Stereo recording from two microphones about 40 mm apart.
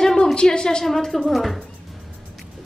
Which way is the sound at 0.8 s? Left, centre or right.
Centre.